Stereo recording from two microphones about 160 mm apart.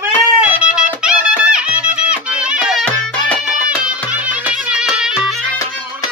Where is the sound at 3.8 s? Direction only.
5° right (ahead or behind).